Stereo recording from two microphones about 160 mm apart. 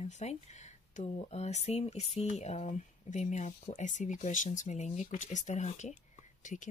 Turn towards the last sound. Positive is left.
turn(degrees=50)  # may be behind; listen again after turning